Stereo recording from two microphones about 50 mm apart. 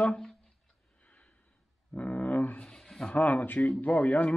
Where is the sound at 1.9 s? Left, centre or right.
Left.